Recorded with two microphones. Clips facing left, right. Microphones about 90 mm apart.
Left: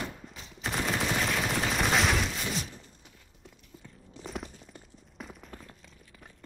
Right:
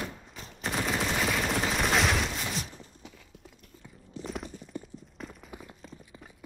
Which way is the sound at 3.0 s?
90° right.